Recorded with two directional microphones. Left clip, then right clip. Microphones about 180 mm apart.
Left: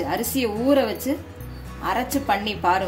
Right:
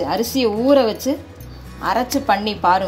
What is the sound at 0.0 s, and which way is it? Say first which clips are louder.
A woman's voice: right 5 dB; 25° right (ahead or behind).